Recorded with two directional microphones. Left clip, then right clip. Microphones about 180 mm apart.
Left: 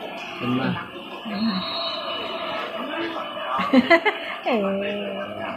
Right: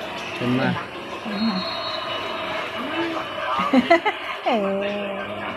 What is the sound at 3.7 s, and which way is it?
Speech, 15° left (ahead or behind).